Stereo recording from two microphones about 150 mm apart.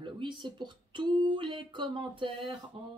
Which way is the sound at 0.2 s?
30° right (ahead or behind).